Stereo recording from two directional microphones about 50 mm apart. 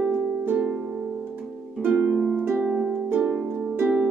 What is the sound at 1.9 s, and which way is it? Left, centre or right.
Music, centre.